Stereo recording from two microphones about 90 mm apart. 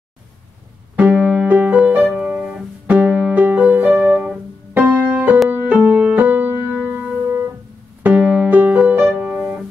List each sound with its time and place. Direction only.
0.9 s music: 15° right (ahead or behind)
8.0 s music: 15° right (ahead or behind)